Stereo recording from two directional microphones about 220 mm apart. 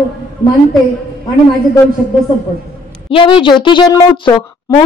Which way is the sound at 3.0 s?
25° left (ahead or behind).